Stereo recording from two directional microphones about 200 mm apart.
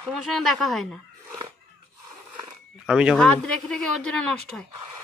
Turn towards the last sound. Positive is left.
turn(degrees=5)  # may be behind; listen again after turning